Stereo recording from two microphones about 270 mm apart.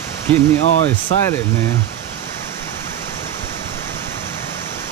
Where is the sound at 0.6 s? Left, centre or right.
Left.